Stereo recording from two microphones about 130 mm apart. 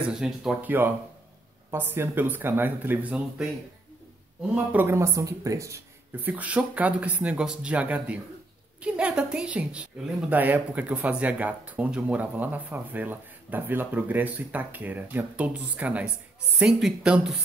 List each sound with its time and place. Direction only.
0.1 s speech: 5° right (ahead or behind)
4.7 s speech: 20° right (ahead or behind)